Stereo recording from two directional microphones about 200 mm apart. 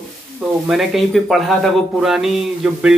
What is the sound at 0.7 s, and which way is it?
A man's voice, centre (ahead or behind).